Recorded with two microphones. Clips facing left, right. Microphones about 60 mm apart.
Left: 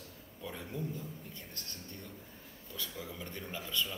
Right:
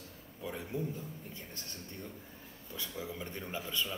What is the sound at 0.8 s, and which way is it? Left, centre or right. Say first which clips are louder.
Speech: right 3 dB; centre.